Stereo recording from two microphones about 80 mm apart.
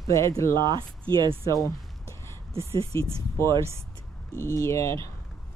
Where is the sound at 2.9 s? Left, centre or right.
Left.